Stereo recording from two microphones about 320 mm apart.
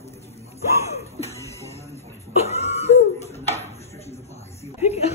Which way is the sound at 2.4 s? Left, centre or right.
Centre.